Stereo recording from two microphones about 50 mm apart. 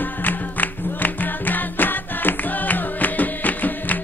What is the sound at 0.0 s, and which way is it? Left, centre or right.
Music, left.